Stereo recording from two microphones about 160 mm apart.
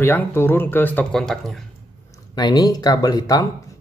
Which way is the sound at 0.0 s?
15° left (ahead or behind).